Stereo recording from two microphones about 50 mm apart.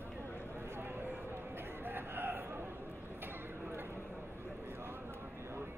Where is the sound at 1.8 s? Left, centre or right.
Right.